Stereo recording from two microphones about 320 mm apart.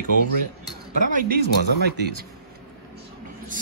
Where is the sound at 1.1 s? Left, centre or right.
Right.